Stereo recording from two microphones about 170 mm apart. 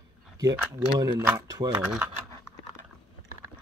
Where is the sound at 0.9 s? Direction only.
20° right (ahead or behind).